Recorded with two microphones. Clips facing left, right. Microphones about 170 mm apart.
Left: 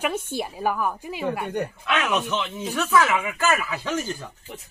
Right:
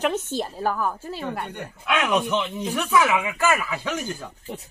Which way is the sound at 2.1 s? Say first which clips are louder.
Right 2 dB; 15° right (ahead or behind).